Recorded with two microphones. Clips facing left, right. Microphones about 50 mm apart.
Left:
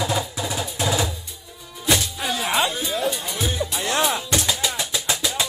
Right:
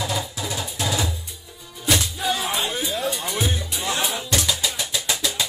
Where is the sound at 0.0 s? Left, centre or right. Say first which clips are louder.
Left 3 dB; centre.